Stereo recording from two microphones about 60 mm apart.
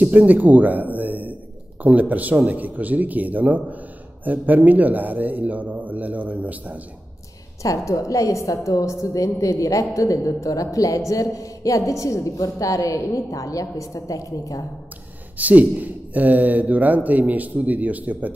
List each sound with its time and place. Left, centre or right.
0.1 s speech: right
7.6 s a woman's voice: left
15.3 s speech: right